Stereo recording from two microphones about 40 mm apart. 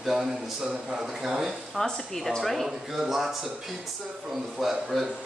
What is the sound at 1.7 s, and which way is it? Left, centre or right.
Speech, centre.